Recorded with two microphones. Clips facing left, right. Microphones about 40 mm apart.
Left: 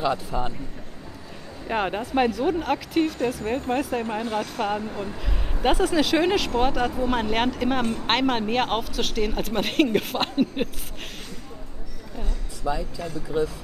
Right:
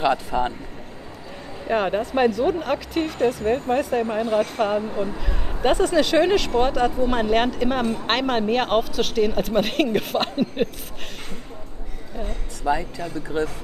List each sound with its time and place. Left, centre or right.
0.0 s speech: right
1.7 s speech: centre
12.2 s a woman's voice: right